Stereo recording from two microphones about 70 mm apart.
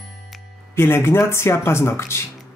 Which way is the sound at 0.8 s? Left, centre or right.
Left.